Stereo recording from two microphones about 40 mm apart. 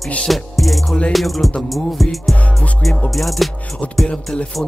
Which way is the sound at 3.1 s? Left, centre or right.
Centre.